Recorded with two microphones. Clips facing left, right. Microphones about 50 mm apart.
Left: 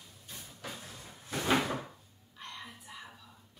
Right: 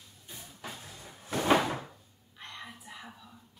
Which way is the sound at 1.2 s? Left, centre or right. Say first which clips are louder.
Right 4 dB; right.